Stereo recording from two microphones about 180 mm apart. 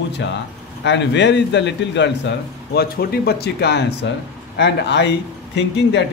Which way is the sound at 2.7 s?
60° left (ahead or behind).